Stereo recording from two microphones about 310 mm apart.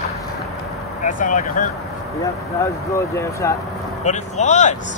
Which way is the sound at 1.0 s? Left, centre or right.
Left.